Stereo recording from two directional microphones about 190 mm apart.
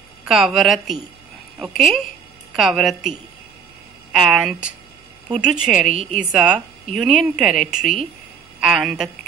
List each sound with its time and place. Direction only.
0.2 s speech: centre (ahead or behind)